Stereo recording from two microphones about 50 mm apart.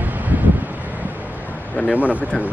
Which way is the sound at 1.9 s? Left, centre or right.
Right.